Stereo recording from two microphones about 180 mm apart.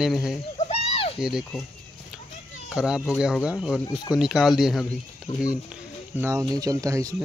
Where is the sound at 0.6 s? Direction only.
35° left (ahead or behind).